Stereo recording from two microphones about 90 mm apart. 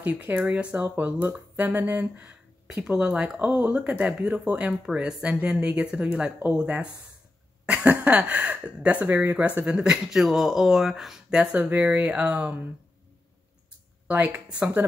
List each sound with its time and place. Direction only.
0.0 s speech: 20° right (ahead or behind)
14.0 s speech: 15° right (ahead or behind)